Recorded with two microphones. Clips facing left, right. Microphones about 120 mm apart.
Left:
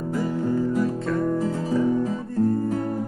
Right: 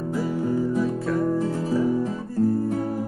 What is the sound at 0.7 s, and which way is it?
Guitar, centre (ahead or behind).